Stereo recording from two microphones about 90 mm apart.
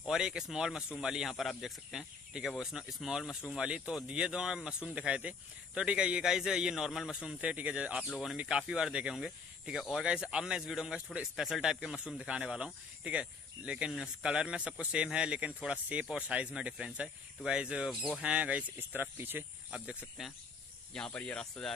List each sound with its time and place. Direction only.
0.0 s speech: 5° right (ahead or behind); by 19.4 s 25° right (ahead or behind)
20.2 s speech: 5° right (ahead or behind)
20.9 s speech: 10° left (ahead or behind)